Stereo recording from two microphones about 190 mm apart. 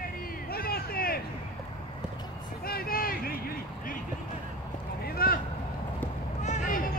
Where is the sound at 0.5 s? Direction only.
55° left (ahead or behind).